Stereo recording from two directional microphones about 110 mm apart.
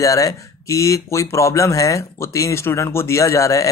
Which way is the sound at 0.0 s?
30° left (ahead or behind).